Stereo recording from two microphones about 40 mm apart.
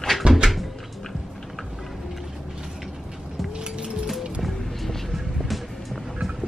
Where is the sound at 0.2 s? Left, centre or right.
Right.